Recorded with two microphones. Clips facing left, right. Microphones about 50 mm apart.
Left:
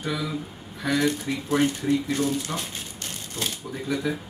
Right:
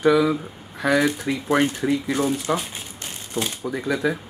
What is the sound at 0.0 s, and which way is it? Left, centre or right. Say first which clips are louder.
Speech: right 12 dB; right.